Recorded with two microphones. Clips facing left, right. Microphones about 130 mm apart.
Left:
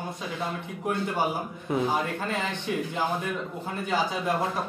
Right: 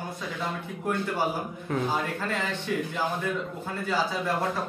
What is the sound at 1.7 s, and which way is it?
Speech, 20° left (ahead or behind).